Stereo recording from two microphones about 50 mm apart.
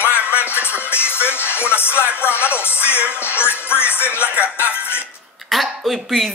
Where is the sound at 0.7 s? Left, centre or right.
Left.